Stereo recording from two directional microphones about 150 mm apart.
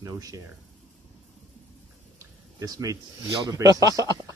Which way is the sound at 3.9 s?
25° left (ahead or behind).